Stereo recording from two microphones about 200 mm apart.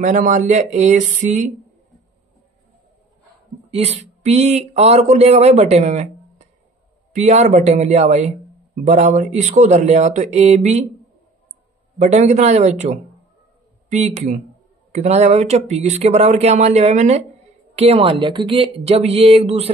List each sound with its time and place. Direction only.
0.0 s speech: 40° right (ahead or behind)
3.7 s speech: 30° right (ahead or behind)
12.0 s speech: 35° right (ahead or behind)